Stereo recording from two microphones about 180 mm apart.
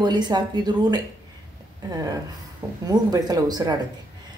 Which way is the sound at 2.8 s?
20° right (ahead or behind).